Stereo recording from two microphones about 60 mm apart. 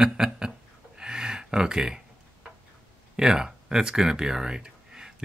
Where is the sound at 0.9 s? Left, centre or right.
Centre.